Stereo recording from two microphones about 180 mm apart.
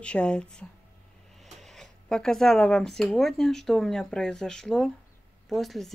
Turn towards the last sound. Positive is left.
turn(degrees=0)  # may be behind; listen again after turning